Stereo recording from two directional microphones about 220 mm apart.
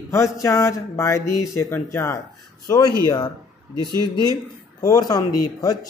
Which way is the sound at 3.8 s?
15° right (ahead or behind).